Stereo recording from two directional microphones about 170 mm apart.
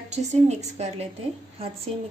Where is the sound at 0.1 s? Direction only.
40° right (ahead or behind).